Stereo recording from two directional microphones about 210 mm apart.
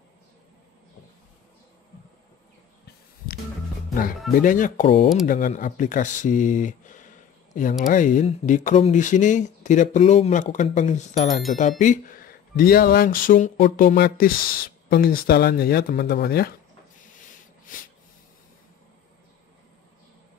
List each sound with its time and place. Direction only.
4.4 s speech: 40° left (ahead or behind)
5.2 s speech: 40° left (ahead or behind)